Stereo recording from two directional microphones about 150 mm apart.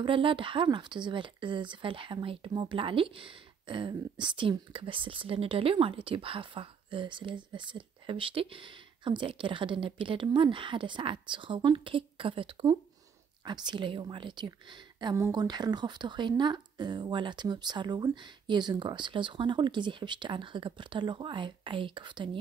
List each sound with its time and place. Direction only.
0.0 s speech: 35° right (ahead or behind)